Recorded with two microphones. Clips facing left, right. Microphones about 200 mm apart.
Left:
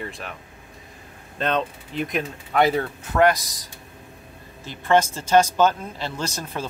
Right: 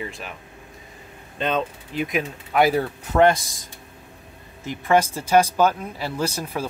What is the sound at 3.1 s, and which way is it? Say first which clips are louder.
Speech: right 2 dB; 25° right (ahead or behind).